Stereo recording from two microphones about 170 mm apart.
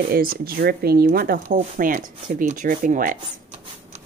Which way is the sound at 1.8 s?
50° right (ahead or behind).